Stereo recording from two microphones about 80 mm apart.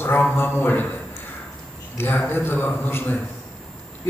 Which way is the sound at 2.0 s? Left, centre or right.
Left.